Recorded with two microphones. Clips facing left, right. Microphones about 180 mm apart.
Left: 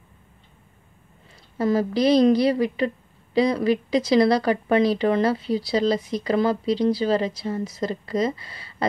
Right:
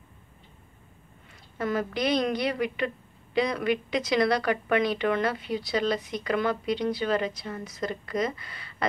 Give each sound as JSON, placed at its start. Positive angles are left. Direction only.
{"t": 1.6, "sound": "speech", "side_deg": 35}